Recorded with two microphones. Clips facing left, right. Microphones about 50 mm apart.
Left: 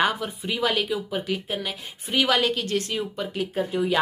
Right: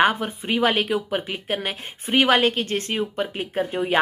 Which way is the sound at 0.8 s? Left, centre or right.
Right.